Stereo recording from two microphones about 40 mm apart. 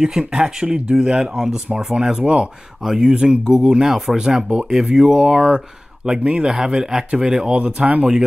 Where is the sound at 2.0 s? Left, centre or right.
Right.